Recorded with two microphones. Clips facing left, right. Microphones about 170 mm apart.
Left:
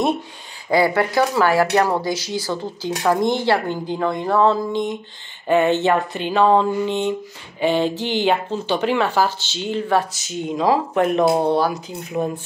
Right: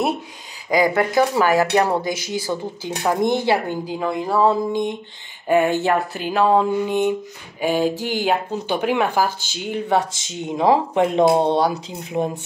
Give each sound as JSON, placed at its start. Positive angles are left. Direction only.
{"t": 0.7, "sound": "speech", "side_deg": -15}
{"t": 3.9, "sound": "speech", "side_deg": -5}